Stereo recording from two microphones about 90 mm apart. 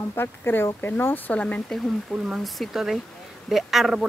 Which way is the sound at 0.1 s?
25° left (ahead or behind).